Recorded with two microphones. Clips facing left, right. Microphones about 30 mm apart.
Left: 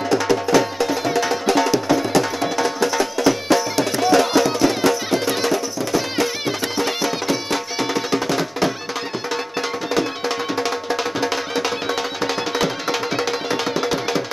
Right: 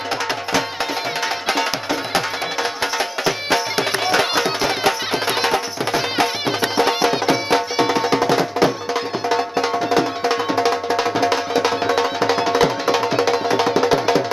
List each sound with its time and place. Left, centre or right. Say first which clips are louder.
0.1 s music: left 5 dB; right